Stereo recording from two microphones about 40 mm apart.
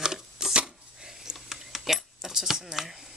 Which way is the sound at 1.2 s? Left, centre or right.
Centre.